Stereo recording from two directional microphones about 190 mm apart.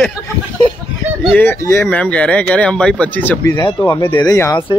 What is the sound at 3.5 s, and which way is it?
Speech, 20° left (ahead or behind).